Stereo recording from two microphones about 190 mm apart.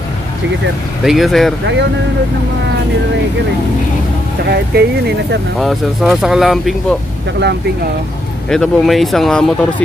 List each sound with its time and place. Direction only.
1.0 s speech: centre (ahead or behind)
4.5 s speech: 60° right (ahead or behind)
5.6 s speech: centre (ahead or behind)
8.5 s speech: centre (ahead or behind)